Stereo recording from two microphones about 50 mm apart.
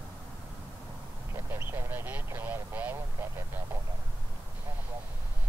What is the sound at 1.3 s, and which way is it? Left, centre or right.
Vehicle, right.